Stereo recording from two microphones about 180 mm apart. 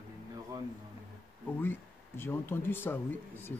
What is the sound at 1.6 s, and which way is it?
Speech, 10° left (ahead or behind).